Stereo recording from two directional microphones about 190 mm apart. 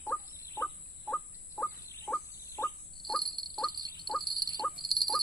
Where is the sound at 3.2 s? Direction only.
25° right (ahead or behind).